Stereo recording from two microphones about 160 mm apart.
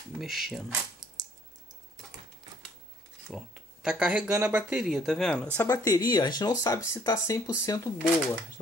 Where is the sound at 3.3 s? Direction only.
5° right (ahead or behind).